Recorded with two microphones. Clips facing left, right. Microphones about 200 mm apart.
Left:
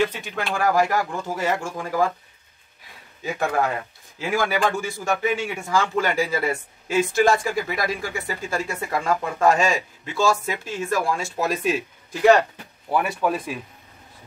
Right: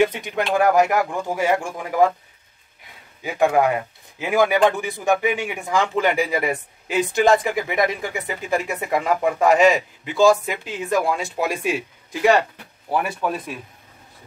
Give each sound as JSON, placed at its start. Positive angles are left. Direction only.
{"t": 0.0, "sound": "speech", "side_deg": -20}
{"t": 4.2, "sound": "speech", "side_deg": -20}
{"t": 12.9, "sound": "speech", "side_deg": 0}